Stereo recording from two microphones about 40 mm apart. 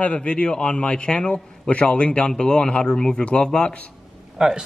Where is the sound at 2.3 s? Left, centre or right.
Centre.